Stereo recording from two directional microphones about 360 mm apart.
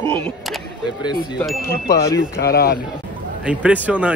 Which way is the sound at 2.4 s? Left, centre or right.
Left.